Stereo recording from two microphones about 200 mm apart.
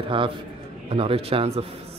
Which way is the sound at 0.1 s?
25° right (ahead or behind).